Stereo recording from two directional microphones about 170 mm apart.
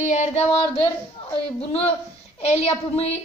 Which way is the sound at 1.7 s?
35° left (ahead or behind).